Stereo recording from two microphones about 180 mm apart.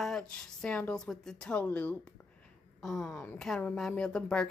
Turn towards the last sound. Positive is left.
turn(degrees=5)  # may be behind; listen again after turning